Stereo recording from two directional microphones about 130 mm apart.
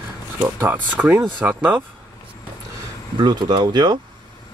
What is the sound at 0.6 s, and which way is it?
Speech, 15° right (ahead or behind).